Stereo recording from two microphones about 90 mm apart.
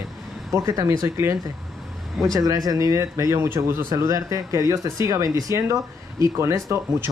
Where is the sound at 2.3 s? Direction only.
40° right (ahead or behind).